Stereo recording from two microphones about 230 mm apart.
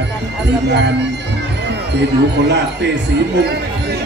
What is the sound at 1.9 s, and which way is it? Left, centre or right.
A man's voice, right.